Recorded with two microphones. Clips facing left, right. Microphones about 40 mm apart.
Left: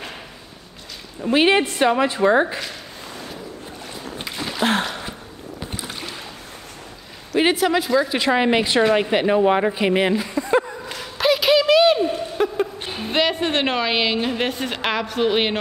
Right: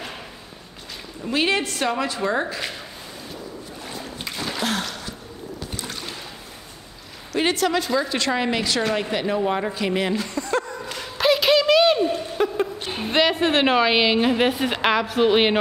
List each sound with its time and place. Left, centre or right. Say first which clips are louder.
1.2 s a woman's voice: left 5 dB; left
3.9 s boat: left 1 dB; centre
4.6 s gasp: left 9 dB; left
5.8 s rowboat: even; centre
7.3 s a woman's voice: left 3 dB; centre
10.9 s a sound: right 1 dB; centre
13.1 s a woman's voice: right 1 dB; centre